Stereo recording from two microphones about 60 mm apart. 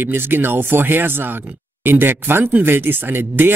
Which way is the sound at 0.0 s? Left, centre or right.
Right.